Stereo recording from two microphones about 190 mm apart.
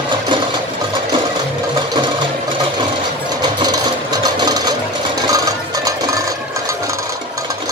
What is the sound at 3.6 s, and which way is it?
Sewing machine, 20° right (ahead or behind).